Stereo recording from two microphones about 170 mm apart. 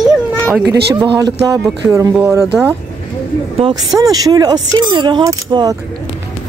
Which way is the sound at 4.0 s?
20° right (ahead or behind).